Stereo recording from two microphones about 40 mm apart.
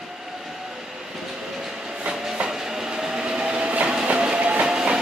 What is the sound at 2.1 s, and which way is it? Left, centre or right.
Train, centre.